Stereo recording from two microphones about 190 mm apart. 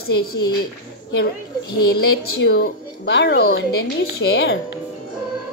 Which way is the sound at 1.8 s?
55° left (ahead or behind).